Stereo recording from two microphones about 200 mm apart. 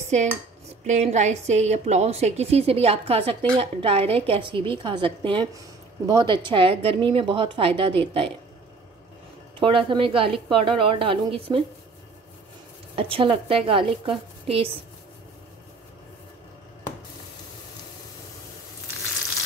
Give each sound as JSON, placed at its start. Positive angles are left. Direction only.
{"t": 0.0, "sound": "cutlery", "side_deg": -35}
{"t": 0.8, "sound": "a woman's voice", "side_deg": -35}
{"t": 9.6, "sound": "a woman's voice", "side_deg": -25}
{"t": 12.9, "sound": "a woman's voice", "side_deg": -25}